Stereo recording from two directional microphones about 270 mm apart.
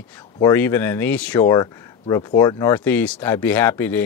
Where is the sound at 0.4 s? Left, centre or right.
Centre.